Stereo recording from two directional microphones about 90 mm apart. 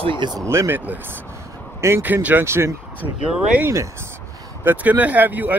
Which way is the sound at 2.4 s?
30° right (ahead or behind).